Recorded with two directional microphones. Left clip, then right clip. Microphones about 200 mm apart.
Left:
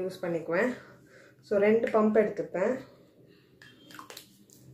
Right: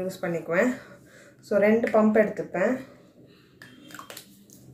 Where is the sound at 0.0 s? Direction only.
Centre (ahead or behind).